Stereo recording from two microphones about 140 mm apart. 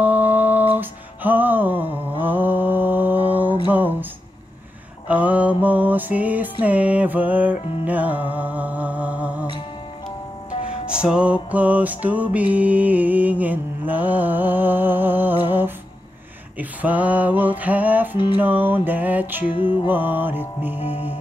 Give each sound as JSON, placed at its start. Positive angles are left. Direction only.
{"t": 0.0, "sound": "a sound", "side_deg": -10}
{"t": 0.7, "sound": "music", "side_deg": -10}
{"t": 5.0, "sound": "mantra", "side_deg": -10}
{"t": 6.6, "sound": "music", "side_deg": -10}
{"t": 10.7, "sound": "music", "side_deg": -5}
{"t": 18.1, "sound": "music", "side_deg": 35}
{"t": 18.4, "sound": "music", "side_deg": -15}
{"t": 19.5, "sound": "music", "side_deg": 35}
{"t": 19.9, "sound": "music", "side_deg": -15}